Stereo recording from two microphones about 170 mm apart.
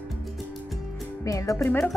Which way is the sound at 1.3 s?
20° left (ahead or behind).